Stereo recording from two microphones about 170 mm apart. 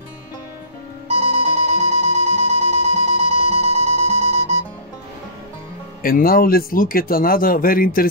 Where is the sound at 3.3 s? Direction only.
40° right (ahead or behind).